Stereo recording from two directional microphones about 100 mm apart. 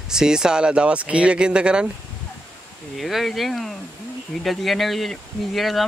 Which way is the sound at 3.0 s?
Centre (ahead or behind).